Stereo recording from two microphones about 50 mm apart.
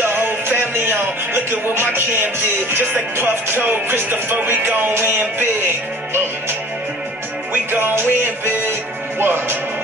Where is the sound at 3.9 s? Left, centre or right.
Right.